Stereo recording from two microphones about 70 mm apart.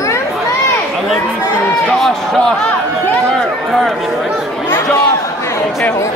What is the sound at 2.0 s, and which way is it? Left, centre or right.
Speech, centre.